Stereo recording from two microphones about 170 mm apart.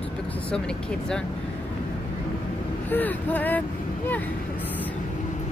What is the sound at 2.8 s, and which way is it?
Speech, 10° left (ahead or behind).